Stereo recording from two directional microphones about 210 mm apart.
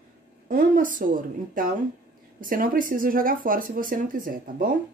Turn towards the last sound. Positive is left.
turn(degrees=-40)  # may be behind; listen again after turning